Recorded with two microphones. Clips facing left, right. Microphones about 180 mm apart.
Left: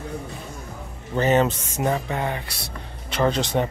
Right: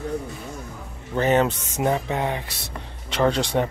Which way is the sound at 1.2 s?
10° right (ahead or behind).